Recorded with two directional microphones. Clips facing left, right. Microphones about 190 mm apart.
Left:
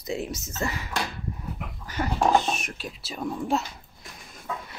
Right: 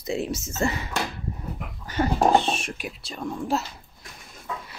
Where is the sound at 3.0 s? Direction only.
5° left (ahead or behind).